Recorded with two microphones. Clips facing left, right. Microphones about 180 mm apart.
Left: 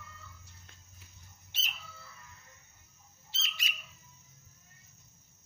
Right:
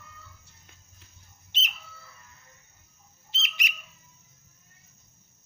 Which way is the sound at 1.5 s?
20° right (ahead or behind).